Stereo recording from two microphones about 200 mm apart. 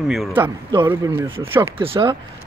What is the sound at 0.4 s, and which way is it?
Speech, 20° right (ahead or behind).